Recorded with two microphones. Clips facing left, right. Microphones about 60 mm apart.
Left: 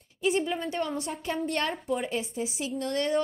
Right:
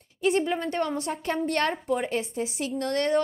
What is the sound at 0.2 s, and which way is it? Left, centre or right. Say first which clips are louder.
A woman's voice: right 3 dB; right.